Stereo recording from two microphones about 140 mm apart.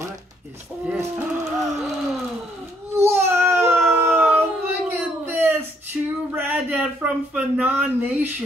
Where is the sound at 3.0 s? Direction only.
20° right (ahead or behind).